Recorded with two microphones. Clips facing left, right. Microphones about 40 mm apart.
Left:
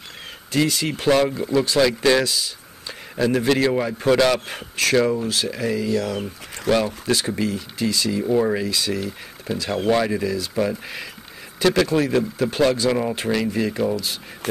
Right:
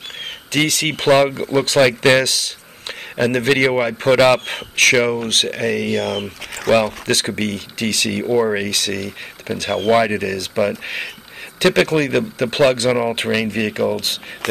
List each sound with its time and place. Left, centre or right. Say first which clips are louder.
0.5 s speech: right 3 dB; right
1.8 s speech: right 5 dB; right
2.2 s a man's voice: right 3 dB; right
4.9 s speech: right 2 dB; right
5.2 s speech: right 4 dB; right
8.3 s speech: right 3 dB; right
8.5 s speech: right 2 dB; right
9.8 s speech: right 5 dB; right
10.1 s speech: right 3 dB; right